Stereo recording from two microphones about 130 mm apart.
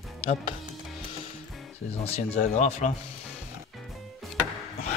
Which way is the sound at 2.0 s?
55° left (ahead or behind).